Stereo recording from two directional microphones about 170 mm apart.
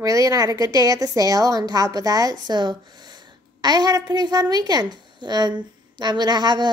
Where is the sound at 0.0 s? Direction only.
20° right (ahead or behind).